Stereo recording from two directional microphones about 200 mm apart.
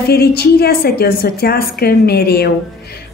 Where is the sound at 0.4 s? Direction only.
50° left (ahead or behind).